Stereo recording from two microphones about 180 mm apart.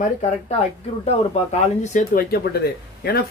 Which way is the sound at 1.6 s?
40° left (ahead or behind).